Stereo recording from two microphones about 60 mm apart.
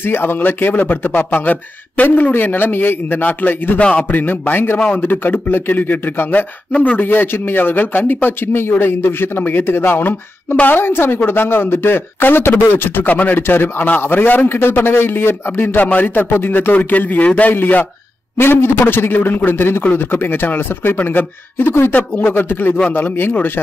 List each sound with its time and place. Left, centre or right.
0.0 s speech: left
16.7 s a man's voice: left